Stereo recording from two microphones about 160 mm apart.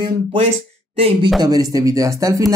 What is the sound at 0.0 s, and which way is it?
Speech, 30° right (ahead or behind).